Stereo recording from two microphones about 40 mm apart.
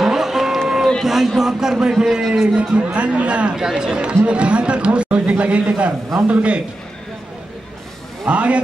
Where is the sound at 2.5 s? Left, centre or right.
Right.